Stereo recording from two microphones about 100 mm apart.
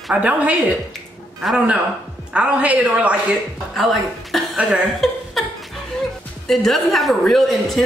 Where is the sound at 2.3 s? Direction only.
10° right (ahead or behind).